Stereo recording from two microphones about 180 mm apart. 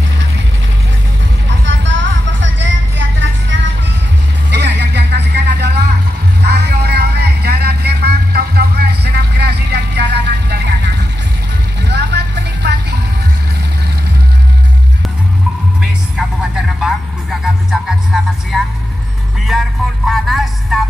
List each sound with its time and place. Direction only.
1.7 s music: 90° right
4.5 s vehicle: 70° right (ahead or behind)
6.4 s music: 65° right (ahead or behind)
11.9 s vehicle: 65° right (ahead or behind)
16.8 s vehicle: centre (ahead or behind)
19.5 s music: centre (ahead or behind)
20.1 s a sound: centre (ahead or behind)